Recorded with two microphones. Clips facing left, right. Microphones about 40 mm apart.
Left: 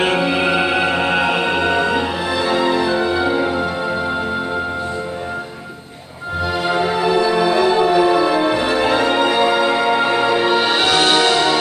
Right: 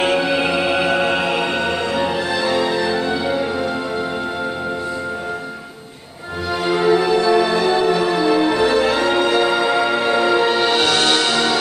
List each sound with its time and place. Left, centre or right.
0.0 s music: centre
6.7 s music: centre